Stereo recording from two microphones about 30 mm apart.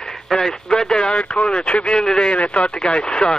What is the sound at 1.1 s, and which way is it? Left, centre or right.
Speech, left.